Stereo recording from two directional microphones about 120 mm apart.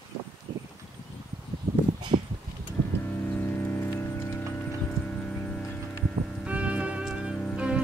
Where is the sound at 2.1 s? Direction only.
40° right (ahead or behind).